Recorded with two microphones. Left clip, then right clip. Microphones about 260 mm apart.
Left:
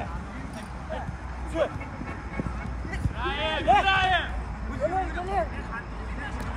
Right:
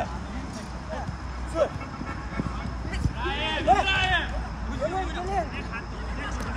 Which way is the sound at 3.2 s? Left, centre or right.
Centre.